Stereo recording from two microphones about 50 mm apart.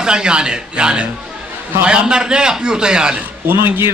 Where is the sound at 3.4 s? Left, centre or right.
Right.